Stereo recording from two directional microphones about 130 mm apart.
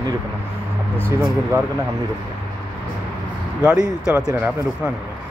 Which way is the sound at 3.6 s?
10° right (ahead or behind).